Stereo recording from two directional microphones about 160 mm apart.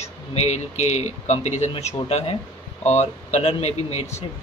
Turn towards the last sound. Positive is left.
turn(degrees=40)  # may be behind; listen again after turning